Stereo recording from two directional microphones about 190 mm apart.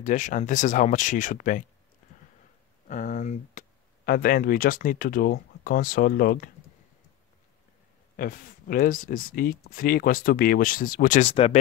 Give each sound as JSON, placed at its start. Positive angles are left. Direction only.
{"t": 0.0, "sound": "speech", "side_deg": 40}
{"t": 2.9, "sound": "speech", "side_deg": 45}
{"t": 8.2, "sound": "speech", "side_deg": 45}